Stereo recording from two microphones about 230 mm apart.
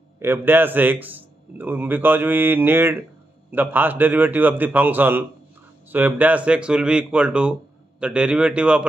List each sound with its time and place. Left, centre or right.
0.2 s a man's voice: centre